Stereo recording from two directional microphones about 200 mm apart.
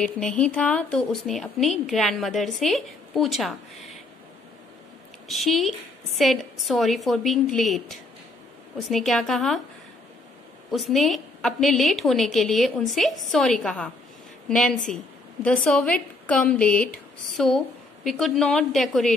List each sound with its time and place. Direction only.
0.0 s a woman's voice: 5° left (ahead or behind)
5.3 s a woman's voice: centre (ahead or behind)
10.7 s a woman's voice: centre (ahead or behind)